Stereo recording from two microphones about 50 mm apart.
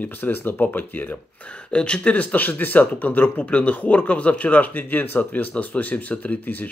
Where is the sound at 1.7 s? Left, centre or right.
Left.